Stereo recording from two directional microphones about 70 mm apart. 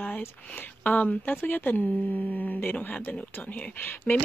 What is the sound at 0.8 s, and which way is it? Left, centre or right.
A woman's voice, left.